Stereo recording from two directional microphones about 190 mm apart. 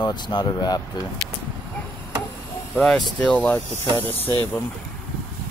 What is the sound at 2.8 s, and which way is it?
Speech, centre (ahead or behind).